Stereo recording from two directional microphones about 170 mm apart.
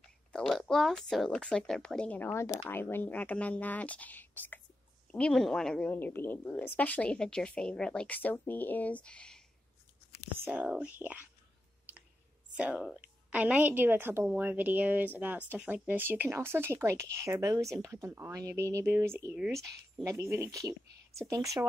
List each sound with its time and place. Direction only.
0.3 s a woman's voice: 5° left (ahead or behind)
10.4 s speech: 10° right (ahead or behind)
12.5 s speech: 5° right (ahead or behind)